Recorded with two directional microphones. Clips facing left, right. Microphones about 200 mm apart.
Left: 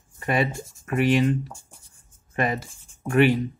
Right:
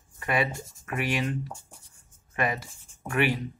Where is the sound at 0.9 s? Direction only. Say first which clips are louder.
Left 9 dB; 25° left (ahead or behind).